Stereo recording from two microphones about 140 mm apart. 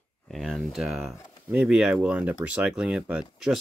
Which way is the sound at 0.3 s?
Centre (ahead or behind).